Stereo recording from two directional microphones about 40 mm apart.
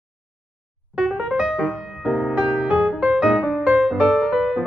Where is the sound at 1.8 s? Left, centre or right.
Centre.